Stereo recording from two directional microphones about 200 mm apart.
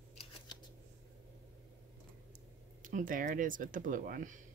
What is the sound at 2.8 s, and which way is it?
Speech, 40° right (ahead or behind).